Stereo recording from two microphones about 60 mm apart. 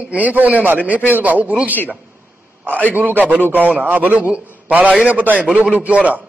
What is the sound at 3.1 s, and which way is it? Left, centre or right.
A man's voice, right.